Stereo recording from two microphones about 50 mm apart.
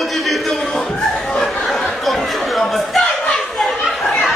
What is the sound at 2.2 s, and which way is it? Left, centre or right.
Chatter, centre.